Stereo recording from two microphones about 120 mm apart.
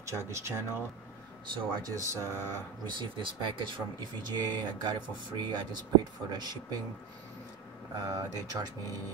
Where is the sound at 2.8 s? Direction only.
40° right (ahead or behind).